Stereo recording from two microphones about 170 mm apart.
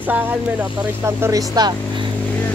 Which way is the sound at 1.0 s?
20° right (ahead or behind).